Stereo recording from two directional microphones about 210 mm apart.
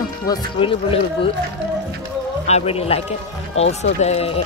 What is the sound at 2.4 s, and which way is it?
Speech, 30° left (ahead or behind).